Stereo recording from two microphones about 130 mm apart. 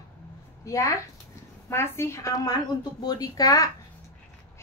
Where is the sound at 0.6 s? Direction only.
25° left (ahead or behind).